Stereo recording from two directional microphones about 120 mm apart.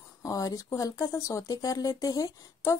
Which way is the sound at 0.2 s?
30° left (ahead or behind).